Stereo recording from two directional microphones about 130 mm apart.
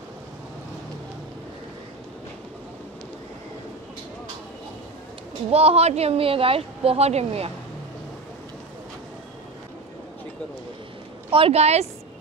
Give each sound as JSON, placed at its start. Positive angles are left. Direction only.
{"t": 5.5, "sound": "speech", "side_deg": -50}
{"t": 11.2, "sound": "speech", "side_deg": -45}